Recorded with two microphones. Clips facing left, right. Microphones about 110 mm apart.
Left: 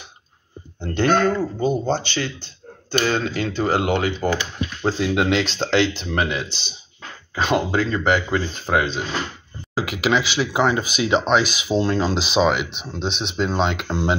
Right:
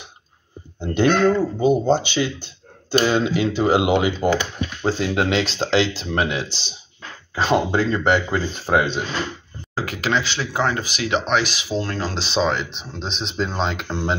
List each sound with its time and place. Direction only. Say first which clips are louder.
0.7 s speech: right 1 dB; 15° right (ahead or behind)
4.8 s speech: left 1 dB; centre (ahead or behind)
7.4 s speech: right 2 dB; centre (ahead or behind)
9.8 s speech: left 2 dB; 10° left (ahead or behind)